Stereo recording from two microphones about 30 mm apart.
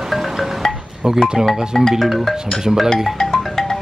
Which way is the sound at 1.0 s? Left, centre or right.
Centre.